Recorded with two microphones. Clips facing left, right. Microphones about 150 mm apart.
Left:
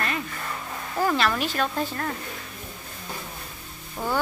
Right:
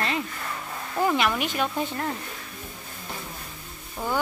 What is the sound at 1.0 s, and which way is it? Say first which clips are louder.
A woman's voice: even; 15° right (ahead or behind).